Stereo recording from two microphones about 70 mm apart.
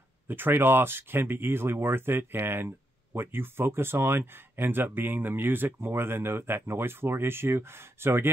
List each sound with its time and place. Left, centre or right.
0.3 s speech: right